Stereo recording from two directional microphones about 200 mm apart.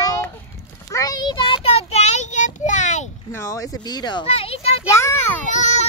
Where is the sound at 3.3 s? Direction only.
15° left (ahead or behind); by 4.8 s 30° left (ahead or behind).